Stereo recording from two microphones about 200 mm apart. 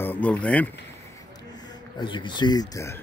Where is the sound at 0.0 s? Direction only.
10° left (ahead or behind).